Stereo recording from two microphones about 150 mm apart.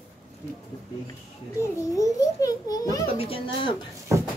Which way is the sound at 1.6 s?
20° left (ahead or behind).